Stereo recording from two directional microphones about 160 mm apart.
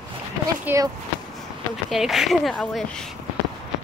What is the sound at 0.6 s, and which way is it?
Speech, 15° right (ahead or behind).